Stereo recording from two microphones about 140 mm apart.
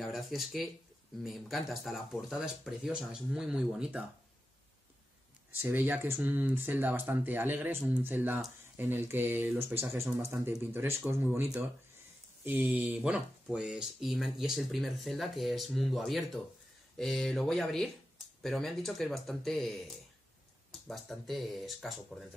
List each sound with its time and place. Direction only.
0.0 s speech: centre (ahead or behind)
5.5 s speech: 15° right (ahead or behind)
12.4 s speech: 15° right (ahead or behind)
20.8 s speech: centre (ahead or behind)